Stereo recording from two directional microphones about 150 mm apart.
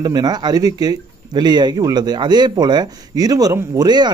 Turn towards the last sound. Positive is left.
turn(degrees=-30)  # may be behind; listen again after turning